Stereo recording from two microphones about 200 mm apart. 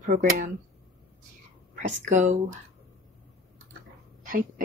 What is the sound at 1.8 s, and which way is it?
Speech, 40° right (ahead or behind).